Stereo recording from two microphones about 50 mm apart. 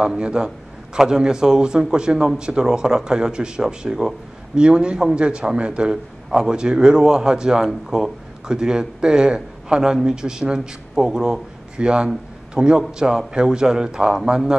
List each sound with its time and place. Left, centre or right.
0.0 s a man's voice: centre